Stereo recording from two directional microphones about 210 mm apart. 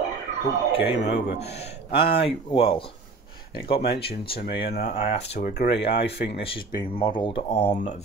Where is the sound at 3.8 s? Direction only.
50° left (ahead or behind).